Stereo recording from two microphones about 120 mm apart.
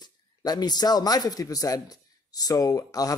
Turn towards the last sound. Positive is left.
turn(degrees=30)  # may be behind; listen again after turning